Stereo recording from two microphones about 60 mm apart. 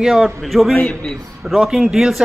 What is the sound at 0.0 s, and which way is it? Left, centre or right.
Speech, centre.